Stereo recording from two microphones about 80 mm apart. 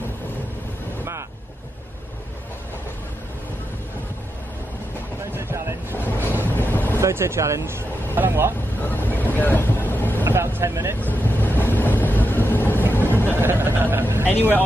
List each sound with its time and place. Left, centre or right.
5.2 s vehicle: right
6.4 s boat: left
7.0 s speech: right
8.8 s vehicle: left
10.2 s vehicle: right
10.6 s speech: right
11.0 s vehicle: left
12.9 s a sound: left
13.4 s a man's voice: right
14.2 s speech: left